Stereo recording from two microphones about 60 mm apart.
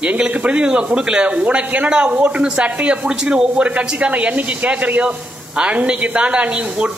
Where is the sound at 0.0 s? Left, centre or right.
Right.